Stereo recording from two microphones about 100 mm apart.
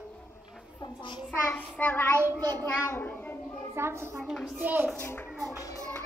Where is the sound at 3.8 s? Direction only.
25° right (ahead or behind).